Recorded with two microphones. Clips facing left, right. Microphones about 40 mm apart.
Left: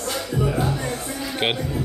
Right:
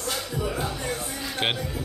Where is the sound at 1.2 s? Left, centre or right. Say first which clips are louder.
Left 4 dB; centre.